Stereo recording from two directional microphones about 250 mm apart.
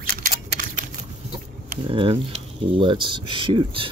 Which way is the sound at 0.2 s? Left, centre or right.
Right.